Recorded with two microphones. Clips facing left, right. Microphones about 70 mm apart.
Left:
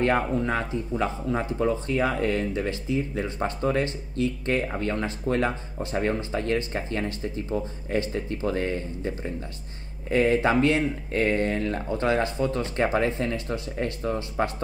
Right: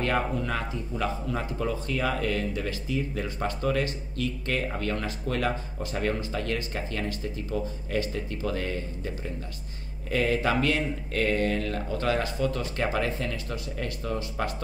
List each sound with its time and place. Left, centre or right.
0.0 s speech: left